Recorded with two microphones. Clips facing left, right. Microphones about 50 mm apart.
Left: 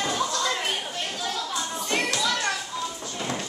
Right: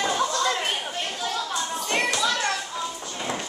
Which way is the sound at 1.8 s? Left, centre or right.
Centre.